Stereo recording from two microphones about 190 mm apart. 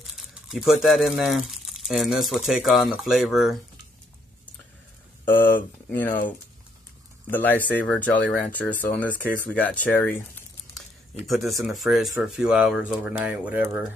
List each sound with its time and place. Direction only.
0.0 s speech: centre (ahead or behind)
5.9 s speech: 10° left (ahead or behind)
11.2 s speech: centre (ahead or behind)